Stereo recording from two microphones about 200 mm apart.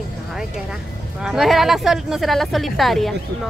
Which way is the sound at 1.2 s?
Centre (ahead or behind).